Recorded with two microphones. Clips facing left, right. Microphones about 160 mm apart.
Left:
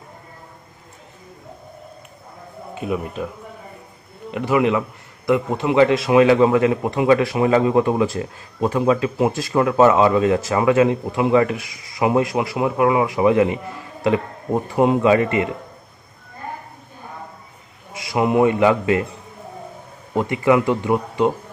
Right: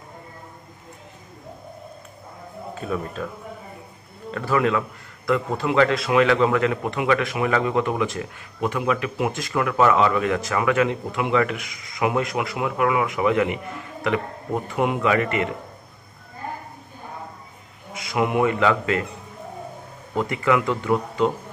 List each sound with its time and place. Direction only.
2.7 s a man's voice: 15° left (ahead or behind)
4.3 s a man's voice: 20° left (ahead or behind)
17.9 s a man's voice: 25° left (ahead or behind)
20.2 s a man's voice: 25° left (ahead or behind)